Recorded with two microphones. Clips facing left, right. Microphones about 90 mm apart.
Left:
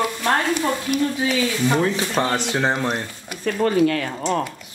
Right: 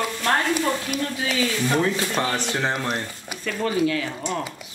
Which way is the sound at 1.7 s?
10° left (ahead or behind).